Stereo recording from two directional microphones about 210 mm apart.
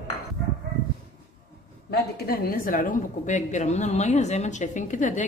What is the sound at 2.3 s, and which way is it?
A woman's voice, 45° left (ahead or behind).